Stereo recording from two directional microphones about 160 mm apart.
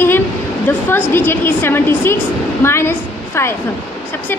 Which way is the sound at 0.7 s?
10° left (ahead or behind).